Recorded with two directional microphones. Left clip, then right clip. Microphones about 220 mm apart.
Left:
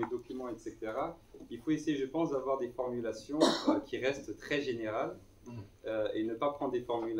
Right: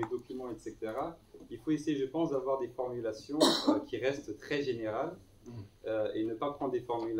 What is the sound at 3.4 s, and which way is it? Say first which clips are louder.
Speech: right 1 dB; 50° right (ahead or behind).